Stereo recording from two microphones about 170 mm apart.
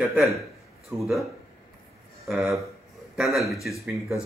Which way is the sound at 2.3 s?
Centre (ahead or behind).